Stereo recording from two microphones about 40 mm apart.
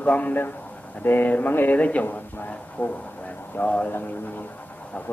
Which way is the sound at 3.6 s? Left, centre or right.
Left.